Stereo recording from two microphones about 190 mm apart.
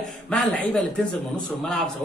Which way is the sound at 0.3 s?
5° left (ahead or behind).